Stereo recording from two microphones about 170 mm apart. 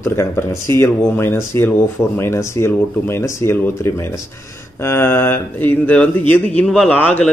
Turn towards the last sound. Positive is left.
turn(degrees=10)  # may be behind; listen again after turning